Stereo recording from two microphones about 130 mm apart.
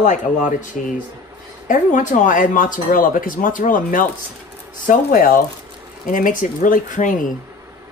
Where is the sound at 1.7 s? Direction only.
75° left (ahead or behind).